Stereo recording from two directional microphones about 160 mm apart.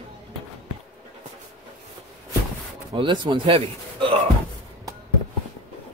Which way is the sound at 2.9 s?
30° right (ahead or behind).